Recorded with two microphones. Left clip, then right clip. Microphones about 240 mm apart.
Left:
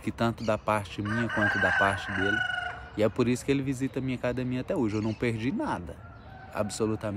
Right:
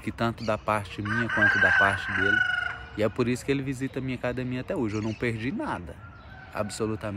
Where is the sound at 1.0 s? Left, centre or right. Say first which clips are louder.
Right 4 dB; left.